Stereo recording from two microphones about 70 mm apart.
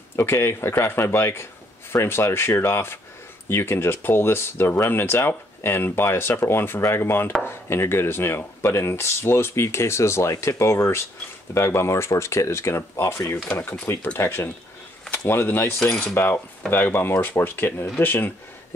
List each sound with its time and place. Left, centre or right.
0.1 s speech: left
16.2 s coin: left
16.7 s speech: left